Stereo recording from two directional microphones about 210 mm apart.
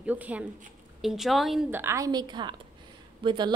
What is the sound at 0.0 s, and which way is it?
A woman's voice, 5° right (ahead or behind).